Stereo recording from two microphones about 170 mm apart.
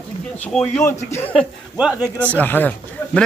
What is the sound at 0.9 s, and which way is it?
Speech, 40° left (ahead or behind).